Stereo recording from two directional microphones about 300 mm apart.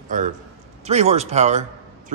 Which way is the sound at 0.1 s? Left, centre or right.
Right.